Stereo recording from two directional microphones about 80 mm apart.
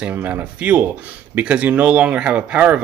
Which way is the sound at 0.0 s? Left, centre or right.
Right.